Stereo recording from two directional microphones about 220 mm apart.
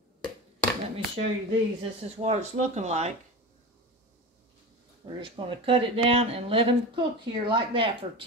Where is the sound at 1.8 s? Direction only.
30° right (ahead or behind).